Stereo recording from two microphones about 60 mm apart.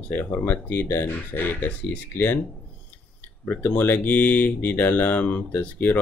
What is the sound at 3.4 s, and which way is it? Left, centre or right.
Speech, left.